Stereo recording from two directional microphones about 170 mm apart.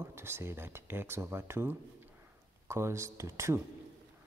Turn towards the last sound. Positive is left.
turn(degrees=-15)  # may be behind; listen again after turning